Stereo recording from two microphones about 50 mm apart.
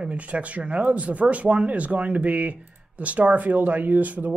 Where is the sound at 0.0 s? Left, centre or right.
Right.